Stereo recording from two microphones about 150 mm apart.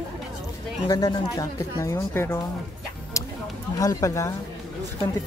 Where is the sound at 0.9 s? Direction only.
25° left (ahead or behind).